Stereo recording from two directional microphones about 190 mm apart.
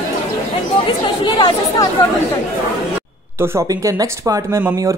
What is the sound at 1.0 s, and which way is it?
Speech, 20° left (ahead or behind).